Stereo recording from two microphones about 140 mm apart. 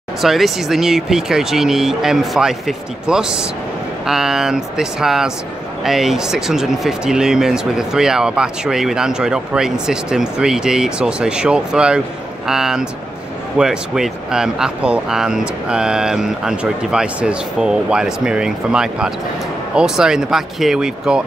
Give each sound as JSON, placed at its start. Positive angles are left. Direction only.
{"t": 0.2, "sound": "speech", "side_deg": 0}